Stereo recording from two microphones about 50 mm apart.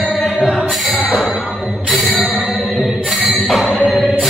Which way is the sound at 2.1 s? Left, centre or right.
Right.